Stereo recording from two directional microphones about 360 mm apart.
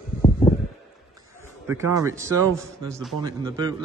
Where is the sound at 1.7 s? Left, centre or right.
Centre.